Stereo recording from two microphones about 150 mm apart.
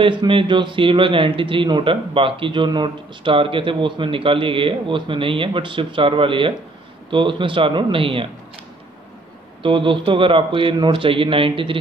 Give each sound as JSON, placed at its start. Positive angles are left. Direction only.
{"t": 0.0, "sound": "a man's voice", "side_deg": -35}
{"t": 9.6, "sound": "a man's voice", "side_deg": -35}